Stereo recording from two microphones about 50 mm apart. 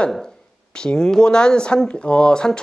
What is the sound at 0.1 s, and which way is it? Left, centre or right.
Speech, centre.